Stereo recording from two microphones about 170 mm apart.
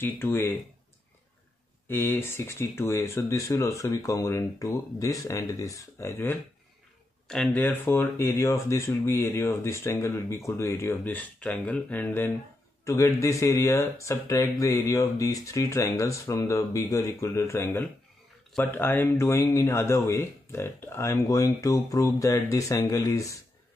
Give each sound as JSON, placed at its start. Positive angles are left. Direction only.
{"t": 0.0, "sound": "speech", "side_deg": 15}
{"t": 1.9, "sound": "speech", "side_deg": 10}
{"t": 7.2, "sound": "speech", "side_deg": 5}